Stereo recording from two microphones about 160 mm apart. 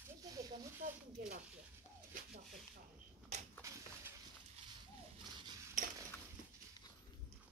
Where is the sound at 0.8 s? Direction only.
60° right (ahead or behind).